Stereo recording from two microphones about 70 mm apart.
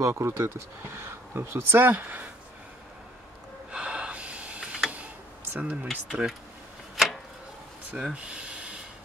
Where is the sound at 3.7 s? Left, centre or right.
Centre.